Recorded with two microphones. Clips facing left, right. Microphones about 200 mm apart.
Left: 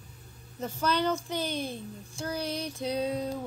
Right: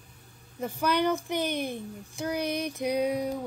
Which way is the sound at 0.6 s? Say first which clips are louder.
Right 2 dB; 15° right (ahead or behind).